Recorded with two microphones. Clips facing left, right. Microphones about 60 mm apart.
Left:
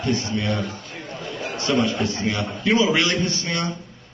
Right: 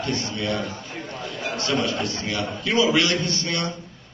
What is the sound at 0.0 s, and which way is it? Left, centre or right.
Speech, left.